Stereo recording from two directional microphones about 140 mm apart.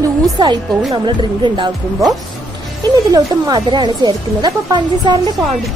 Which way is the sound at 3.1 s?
30° right (ahead or behind).